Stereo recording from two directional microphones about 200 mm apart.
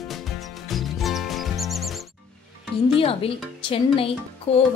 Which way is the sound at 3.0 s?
25° left (ahead or behind).